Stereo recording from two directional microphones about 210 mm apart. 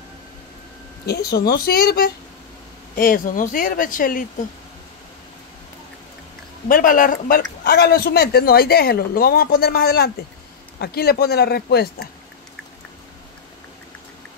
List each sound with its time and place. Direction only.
1.0 s a woman's voice: 50° left (ahead or behind)
6.7 s a woman's voice: 40° left (ahead or behind)